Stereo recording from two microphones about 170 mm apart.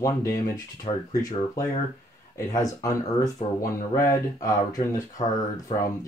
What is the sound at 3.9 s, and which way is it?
Speech, 20° left (ahead or behind).